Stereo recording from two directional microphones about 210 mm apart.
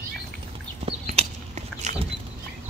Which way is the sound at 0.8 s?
30° right (ahead or behind).